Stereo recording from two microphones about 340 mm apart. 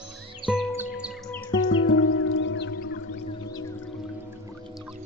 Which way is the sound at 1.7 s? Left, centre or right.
Left.